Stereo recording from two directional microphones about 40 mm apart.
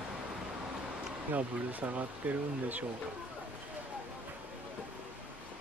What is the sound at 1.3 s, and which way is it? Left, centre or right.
Speech, right.